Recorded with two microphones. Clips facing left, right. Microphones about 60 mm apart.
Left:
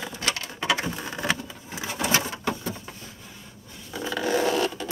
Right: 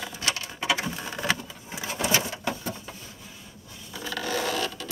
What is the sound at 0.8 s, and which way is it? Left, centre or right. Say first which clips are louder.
Patter: left 1 dB; centre.